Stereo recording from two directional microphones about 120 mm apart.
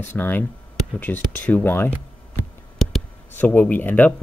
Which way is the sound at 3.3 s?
15° left (ahead or behind).